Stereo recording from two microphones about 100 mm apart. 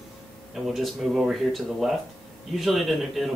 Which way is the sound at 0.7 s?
Centre (ahead or behind).